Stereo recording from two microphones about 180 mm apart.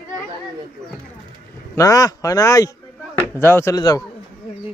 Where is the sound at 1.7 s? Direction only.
20° left (ahead or behind).